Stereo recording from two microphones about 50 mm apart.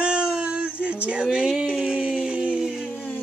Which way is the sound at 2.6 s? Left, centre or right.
Centre.